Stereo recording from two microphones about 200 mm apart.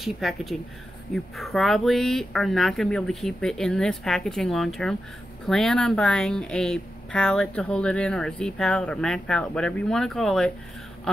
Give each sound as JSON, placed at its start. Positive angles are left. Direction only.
{"t": 0.0, "sound": "a woman's voice", "side_deg": 0}